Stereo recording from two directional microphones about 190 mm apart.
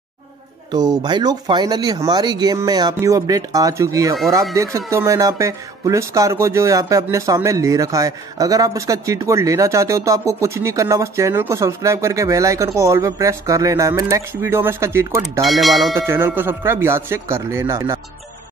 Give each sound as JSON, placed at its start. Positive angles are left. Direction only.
{"t": 0.7, "sound": "speech", "side_deg": -20}
{"t": 15.4, "sound": "speech", "side_deg": 0}
{"t": 16.1, "sound": "speech", "side_deg": -10}